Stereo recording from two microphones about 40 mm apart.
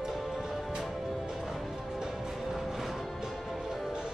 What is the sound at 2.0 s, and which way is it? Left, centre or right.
Music, centre.